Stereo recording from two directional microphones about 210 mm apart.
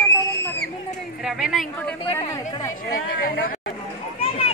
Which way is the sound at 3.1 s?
45° left (ahead or behind).